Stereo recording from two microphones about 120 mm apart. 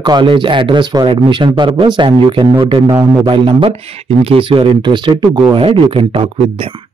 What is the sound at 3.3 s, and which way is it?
Speech, 45° right (ahead or behind).